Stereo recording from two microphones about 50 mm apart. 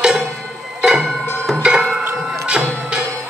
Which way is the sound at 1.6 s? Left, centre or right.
Centre.